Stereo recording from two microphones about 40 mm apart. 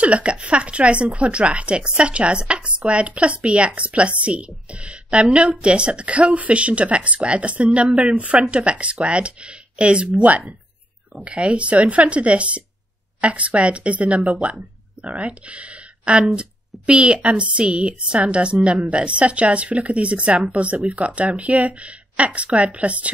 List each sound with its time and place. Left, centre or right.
0.0 s a woman's voice: right